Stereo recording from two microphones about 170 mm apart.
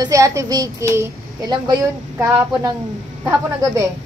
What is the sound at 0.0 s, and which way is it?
A child's voice, 20° right (ahead or behind).